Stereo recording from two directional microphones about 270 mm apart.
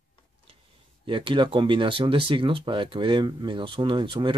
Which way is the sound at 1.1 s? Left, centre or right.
Centre.